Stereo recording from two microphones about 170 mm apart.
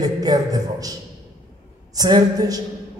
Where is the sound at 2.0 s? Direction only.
25° right (ahead or behind).